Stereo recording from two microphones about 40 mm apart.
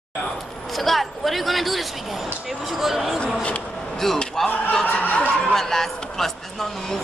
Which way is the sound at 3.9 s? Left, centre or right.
Centre.